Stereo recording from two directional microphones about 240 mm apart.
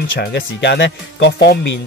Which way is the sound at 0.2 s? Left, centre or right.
Left.